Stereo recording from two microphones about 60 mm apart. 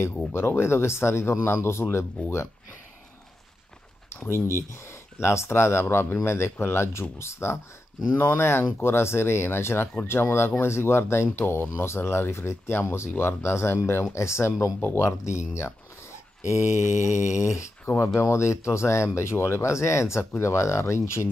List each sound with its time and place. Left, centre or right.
0.3 s speech: left
4.1 s speech: left
16.4 s mantra: left
17.8 s speech: left